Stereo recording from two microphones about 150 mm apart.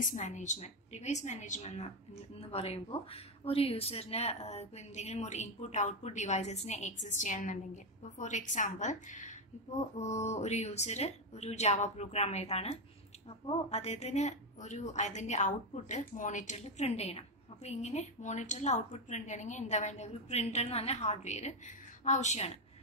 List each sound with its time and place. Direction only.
0.1 s speech: 55° left (ahead or behind)